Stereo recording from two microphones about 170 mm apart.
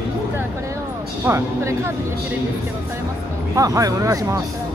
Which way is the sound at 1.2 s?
15° right (ahead or behind).